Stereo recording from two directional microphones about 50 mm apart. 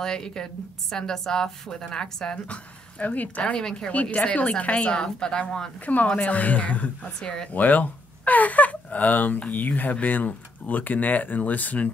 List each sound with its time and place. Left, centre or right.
0.0 s a woman's voice: centre
2.3 s speech: left
3.5 s a woman's voice: centre
3.9 s a woman's voice: left; by 5.7 s centre
5.9 s speech: left
7.2 s a woman's voice: centre
7.5 s speech: left